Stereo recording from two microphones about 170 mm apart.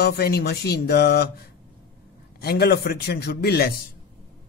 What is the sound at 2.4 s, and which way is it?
Speech, 70° left (ahead or behind).